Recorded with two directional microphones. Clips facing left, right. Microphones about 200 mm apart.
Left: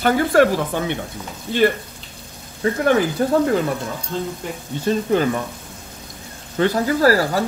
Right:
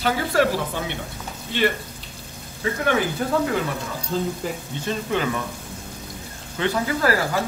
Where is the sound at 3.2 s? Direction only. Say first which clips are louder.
Left 6 dB; 35° left (ahead or behind).